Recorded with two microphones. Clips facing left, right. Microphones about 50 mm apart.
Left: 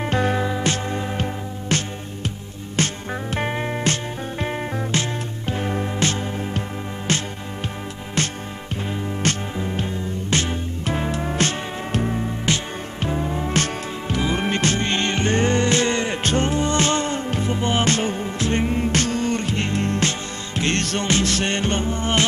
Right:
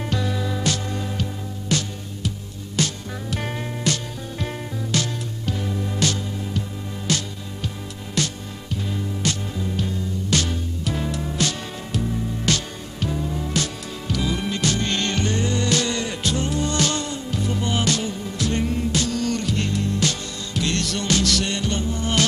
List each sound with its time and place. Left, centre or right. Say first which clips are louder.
0.0 s music: left 5 dB; left
1.7 s music: left 1 dB; left
12.4 s music: right 1 dB; left
15.3 s music: left 6 dB; left
18.9 s music: left 2 dB; left
19.1 s music: left 1 dB; left